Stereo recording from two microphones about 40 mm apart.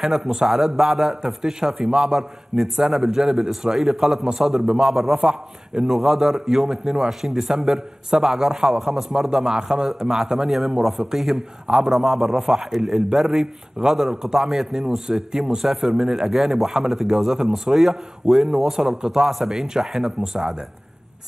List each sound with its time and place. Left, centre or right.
0.0 s a man's voice: centre
5.2 s a man's voice: right
5.9 s a man's voice: centre
19.2 s a man's voice: centre